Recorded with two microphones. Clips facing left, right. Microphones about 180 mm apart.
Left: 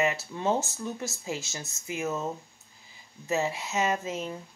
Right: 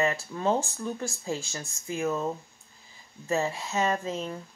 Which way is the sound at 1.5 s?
15° left (ahead or behind).